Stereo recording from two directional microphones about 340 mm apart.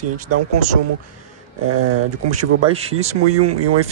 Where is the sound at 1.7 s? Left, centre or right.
Right.